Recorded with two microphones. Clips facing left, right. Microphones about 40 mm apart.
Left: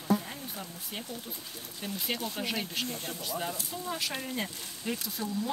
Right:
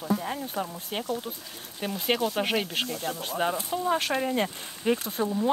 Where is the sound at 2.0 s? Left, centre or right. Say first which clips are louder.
Right 9 dB; right.